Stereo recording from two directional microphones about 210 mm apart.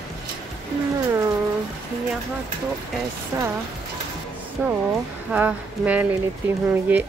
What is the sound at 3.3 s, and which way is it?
Speech, 15° right (ahead or behind).